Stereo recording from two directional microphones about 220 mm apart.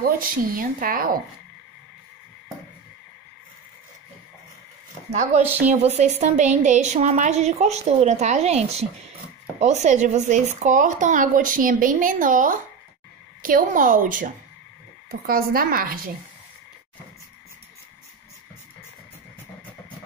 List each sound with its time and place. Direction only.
0.0 s a woman's voice: 40° right (ahead or behind)
5.1 s a woman's voice: 30° right (ahead or behind)